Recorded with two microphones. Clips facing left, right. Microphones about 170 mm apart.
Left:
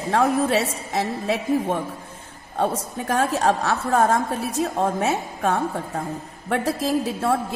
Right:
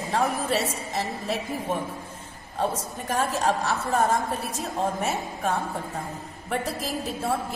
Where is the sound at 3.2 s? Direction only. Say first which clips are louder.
Left 4 dB; 65° left (ahead or behind).